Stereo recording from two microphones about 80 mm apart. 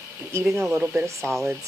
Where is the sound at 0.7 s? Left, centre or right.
Centre.